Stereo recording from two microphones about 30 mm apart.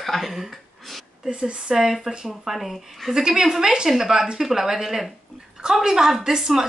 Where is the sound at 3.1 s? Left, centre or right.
Centre.